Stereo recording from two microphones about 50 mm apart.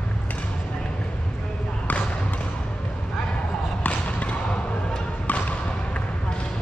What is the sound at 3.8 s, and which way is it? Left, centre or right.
Basketball bounce, left.